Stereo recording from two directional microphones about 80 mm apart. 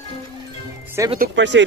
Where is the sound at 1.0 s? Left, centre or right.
Right.